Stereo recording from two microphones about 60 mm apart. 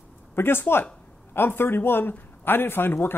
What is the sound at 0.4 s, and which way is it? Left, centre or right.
A man's voice, left.